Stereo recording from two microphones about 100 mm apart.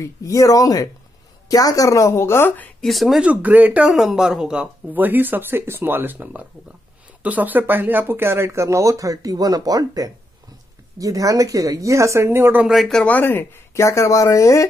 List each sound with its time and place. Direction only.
0.0 s a woman's voice: 30° left (ahead or behind)
2.8 s speech: centre (ahead or behind)
3.3 s a woman's voice: 15° right (ahead or behind)
12.6 s speech: centre (ahead or behind)
13.0 s speech: 15° left (ahead or behind); by 14.7 s 30° left (ahead or behind)